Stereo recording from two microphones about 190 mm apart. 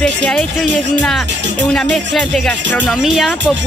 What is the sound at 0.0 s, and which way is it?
Speech, centre (ahead or behind).